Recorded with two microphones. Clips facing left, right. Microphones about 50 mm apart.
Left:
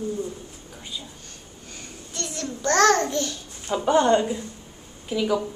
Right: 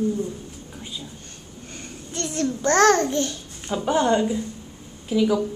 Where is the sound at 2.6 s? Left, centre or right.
Right.